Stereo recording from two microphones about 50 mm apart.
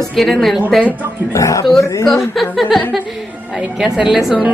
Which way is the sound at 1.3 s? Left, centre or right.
Left.